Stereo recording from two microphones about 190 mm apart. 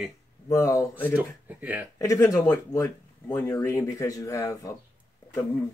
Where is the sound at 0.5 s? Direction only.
15° left (ahead or behind).